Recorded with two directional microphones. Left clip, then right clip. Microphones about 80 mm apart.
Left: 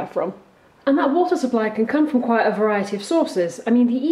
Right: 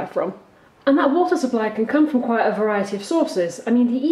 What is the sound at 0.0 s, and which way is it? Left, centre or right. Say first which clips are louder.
Speech: even; centre.